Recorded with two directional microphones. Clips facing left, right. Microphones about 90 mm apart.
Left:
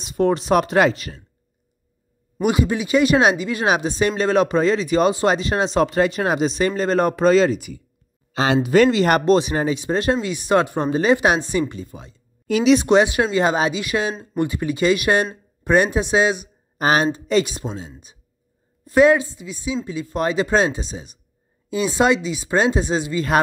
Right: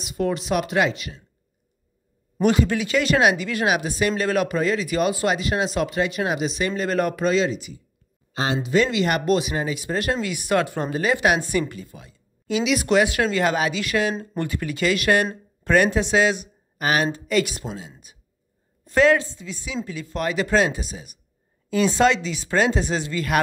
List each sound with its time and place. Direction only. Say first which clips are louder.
0.0 s speech: left 5 dB; 35° left (ahead or behind)
2.4 s speech: even; 15° left (ahead or behind); by 7.8 s 50° left (ahead or behind)
8.3 s speech: left 5 dB; 90° left
8.6 s speech: left 5 dB; 55° left (ahead or behind)
9.2 s speech: left 5 dB; 35° left (ahead or behind)
16.7 s speech: left 4 dB; 30° left (ahead or behind)
18.9 s speech: left 3 dB; 15° left (ahead or behind)